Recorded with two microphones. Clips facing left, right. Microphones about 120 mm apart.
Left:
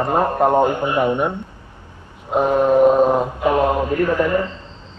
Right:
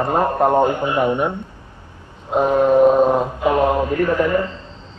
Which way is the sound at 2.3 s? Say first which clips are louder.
Right 1 dB; centre (ahead or behind).